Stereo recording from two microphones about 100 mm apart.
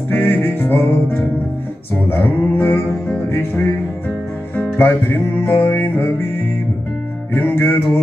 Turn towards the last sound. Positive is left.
turn(degrees=20)  # may be behind; listen again after turning